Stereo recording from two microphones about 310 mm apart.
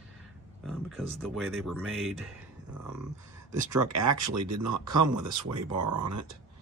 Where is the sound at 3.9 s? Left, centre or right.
Right.